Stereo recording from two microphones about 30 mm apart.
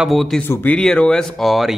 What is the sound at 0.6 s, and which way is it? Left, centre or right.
Speech, left.